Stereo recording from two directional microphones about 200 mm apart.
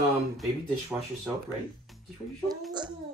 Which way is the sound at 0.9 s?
5° right (ahead or behind).